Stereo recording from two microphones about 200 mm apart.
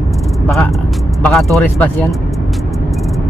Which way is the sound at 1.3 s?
Centre (ahead or behind).